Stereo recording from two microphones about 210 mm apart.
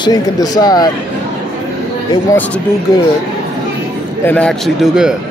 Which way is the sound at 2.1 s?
15° left (ahead or behind).